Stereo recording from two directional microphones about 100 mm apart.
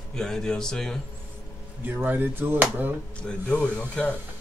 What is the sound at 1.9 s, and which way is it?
Speech, 20° right (ahead or behind).